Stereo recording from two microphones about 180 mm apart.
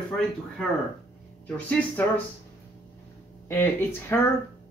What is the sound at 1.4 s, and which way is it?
Speech, 5° left (ahead or behind).